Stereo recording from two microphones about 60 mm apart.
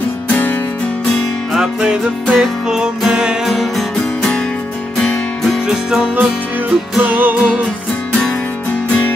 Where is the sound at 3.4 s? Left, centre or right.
Centre.